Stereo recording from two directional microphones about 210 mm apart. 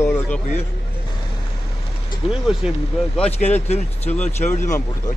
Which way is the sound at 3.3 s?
30° left (ahead or behind).